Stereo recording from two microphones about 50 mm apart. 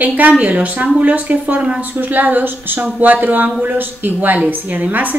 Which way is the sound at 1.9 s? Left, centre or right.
Right.